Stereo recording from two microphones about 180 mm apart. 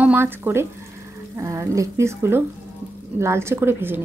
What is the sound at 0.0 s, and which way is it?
A woman's voice, 10° right (ahead or behind).